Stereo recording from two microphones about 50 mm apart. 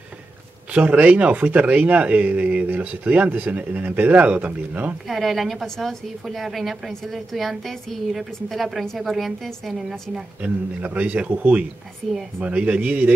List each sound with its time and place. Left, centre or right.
0.7 s speech: right
5.0 s a woman's voice: centre
10.4 s speech: right
12.4 s speech: right